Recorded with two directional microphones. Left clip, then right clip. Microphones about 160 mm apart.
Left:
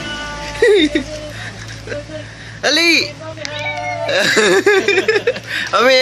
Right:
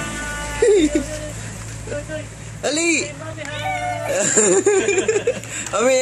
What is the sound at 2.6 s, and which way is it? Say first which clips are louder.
Speech: left 7 dB; centre (ahead or behind).